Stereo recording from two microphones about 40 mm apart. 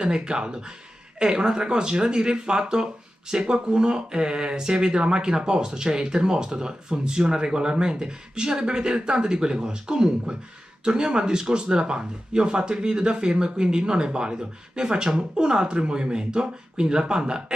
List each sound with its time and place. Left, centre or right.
0.0 s speech: right